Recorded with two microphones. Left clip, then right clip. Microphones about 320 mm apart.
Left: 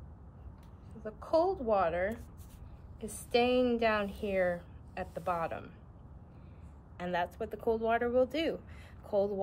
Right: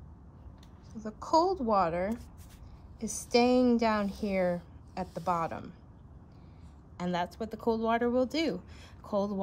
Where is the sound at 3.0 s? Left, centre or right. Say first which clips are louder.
Right 3 dB; centre.